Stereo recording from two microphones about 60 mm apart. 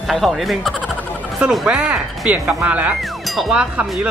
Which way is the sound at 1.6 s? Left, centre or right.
Centre.